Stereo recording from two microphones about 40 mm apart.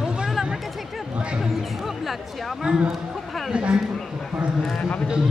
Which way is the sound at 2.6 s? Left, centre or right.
Right.